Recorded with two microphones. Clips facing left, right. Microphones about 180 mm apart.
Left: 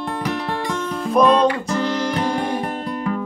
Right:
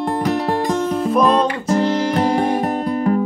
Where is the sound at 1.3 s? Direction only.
45° right (ahead or behind).